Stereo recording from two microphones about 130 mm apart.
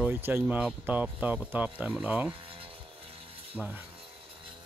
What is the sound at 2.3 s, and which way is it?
Rub, 45° right (ahead or behind).